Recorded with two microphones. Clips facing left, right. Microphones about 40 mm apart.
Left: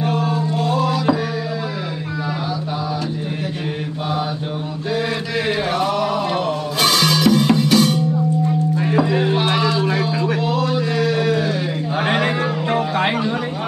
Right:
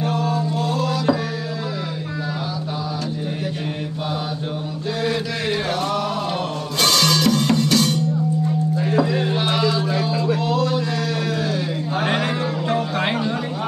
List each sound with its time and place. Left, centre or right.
0.0 s music: centre
6.8 s music: centre
10.4 s a sound: centre